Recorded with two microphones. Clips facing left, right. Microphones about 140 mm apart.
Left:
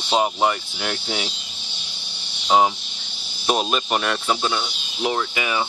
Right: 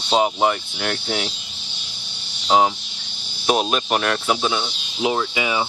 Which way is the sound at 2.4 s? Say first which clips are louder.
Even; centre (ahead or behind).